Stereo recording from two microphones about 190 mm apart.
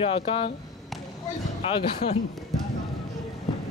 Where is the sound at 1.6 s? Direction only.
30° left (ahead or behind).